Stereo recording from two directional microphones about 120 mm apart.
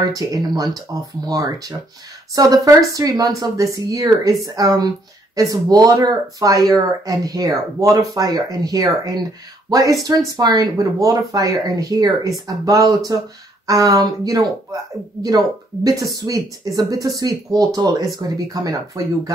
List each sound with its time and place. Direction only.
0.1 s speech: 30° right (ahead or behind)